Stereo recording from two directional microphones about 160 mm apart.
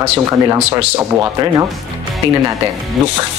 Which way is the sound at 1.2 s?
20° right (ahead or behind).